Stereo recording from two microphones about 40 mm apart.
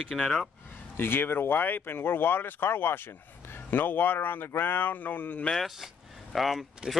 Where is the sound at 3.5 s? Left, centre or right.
Left.